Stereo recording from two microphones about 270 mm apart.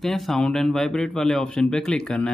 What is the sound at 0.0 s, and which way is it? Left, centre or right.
Speech, centre.